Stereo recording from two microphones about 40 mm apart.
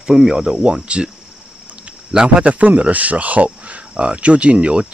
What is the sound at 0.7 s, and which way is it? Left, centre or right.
Speech, right.